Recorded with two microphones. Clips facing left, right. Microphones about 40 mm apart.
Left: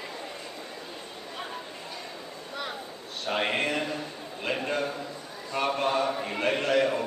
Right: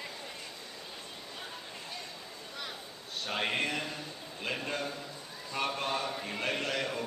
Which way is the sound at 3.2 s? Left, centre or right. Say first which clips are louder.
Left 5 dB; centre.